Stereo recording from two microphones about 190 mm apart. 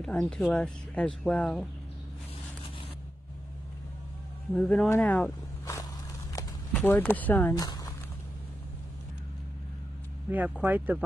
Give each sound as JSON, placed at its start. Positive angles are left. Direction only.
{"t": 0.0, "sound": "speech", "side_deg": 0}
{"t": 4.6, "sound": "speech", "side_deg": 5}
{"t": 6.3, "sound": "a sound", "side_deg": 10}
{"t": 7.5, "sound": "speech", "side_deg": 20}
{"t": 10.3, "sound": "speech", "side_deg": -10}